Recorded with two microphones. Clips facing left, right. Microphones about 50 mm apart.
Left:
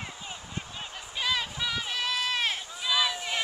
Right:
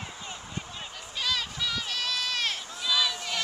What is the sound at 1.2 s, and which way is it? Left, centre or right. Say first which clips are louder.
Run: left 1 dB; centre.